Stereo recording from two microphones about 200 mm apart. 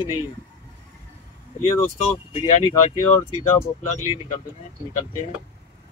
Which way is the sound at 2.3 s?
30° left (ahead or behind).